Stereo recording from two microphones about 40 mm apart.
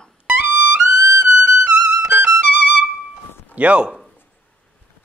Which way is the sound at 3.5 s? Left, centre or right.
Right.